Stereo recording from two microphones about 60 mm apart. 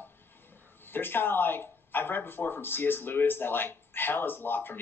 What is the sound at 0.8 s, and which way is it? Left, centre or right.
A man's voice, left.